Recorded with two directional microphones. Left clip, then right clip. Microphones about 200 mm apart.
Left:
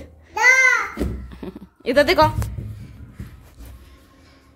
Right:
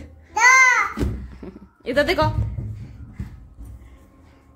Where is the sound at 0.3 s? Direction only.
15° right (ahead or behind).